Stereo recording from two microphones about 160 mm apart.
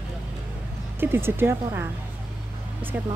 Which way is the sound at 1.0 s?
15° right (ahead or behind).